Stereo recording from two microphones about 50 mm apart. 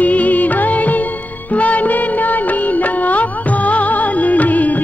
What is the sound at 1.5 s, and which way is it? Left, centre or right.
Music of bollywood, left.